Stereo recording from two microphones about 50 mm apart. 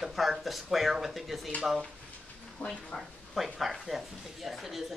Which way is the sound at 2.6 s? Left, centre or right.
Left.